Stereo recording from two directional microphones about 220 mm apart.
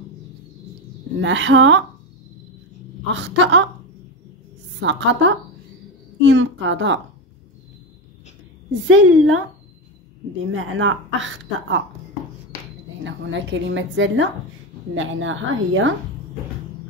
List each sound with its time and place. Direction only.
1.2 s a woman's voice: 55° right (ahead or behind)
3.1 s a woman's voice: 55° right (ahead or behind)
4.7 s a woman's voice: 55° right (ahead or behind)
8.8 s a woman's voice: 65° right (ahead or behind)
10.4 s a woman's voice: 60° right (ahead or behind)
13.0 s a woman's voice: 55° right (ahead or behind)